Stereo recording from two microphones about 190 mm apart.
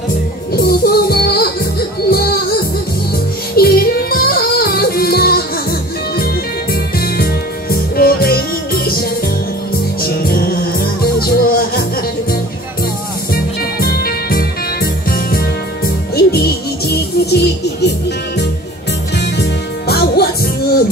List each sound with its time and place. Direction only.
0.6 s music: 55° left (ahead or behind)
3.5 s music: 55° left (ahead or behind)
10.0 s music: 55° left (ahead or behind)
13.3 s music: 55° left (ahead or behind)
19.1 s music: 65° left (ahead or behind)